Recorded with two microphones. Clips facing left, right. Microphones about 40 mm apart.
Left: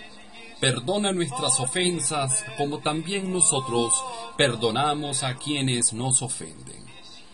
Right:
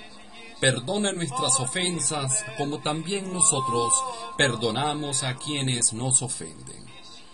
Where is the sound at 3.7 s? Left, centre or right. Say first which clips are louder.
Even; centre.